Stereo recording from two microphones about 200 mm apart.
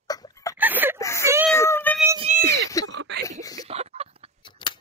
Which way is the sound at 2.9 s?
60° right (ahead or behind).